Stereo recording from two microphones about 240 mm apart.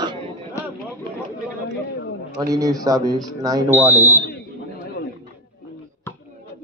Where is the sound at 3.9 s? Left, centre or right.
Centre.